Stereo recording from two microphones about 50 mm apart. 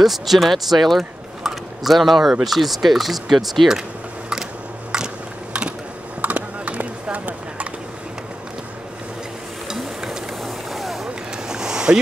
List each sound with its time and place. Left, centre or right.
0.0 s speech: centre
4.9 s a sound: centre
6.2 s clip-clop: right
9.7 s sizzle: centre
10.4 s vehicle: centre
11.3 s a sound: centre